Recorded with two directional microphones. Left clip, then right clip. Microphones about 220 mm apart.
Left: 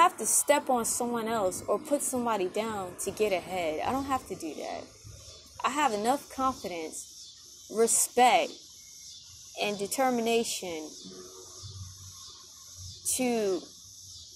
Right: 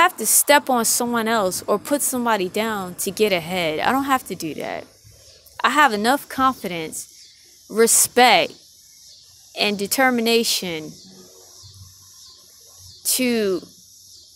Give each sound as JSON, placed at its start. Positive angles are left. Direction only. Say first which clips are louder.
{"t": 0.0, "sound": "a woman's voice", "louder": "right 7 dB", "side_deg": -40}
{"t": 9.5, "sound": "speech", "louder": "right 10 dB", "side_deg": -40}
{"t": 13.0, "sound": "speech", "louder": "right 8 dB", "side_deg": -40}